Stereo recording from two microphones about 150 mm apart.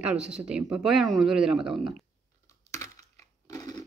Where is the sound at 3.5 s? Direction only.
25° left (ahead or behind).